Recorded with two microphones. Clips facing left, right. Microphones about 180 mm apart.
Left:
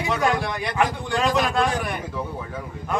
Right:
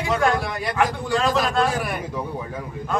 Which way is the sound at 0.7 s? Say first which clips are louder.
Right 2 dB; 20° left (ahead or behind).